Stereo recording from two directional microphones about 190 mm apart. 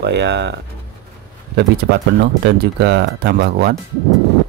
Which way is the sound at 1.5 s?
60° right (ahead or behind).